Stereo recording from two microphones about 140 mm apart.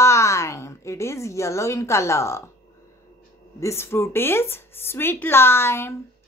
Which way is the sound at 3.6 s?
20° left (ahead or behind).